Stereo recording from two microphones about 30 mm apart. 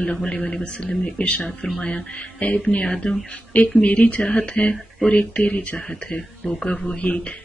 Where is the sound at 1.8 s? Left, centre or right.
Left.